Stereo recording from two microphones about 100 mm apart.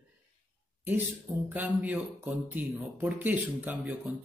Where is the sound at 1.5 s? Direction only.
15° right (ahead or behind).